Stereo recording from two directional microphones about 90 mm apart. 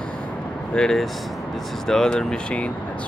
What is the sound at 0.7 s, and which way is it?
Speech, 5° left (ahead or behind).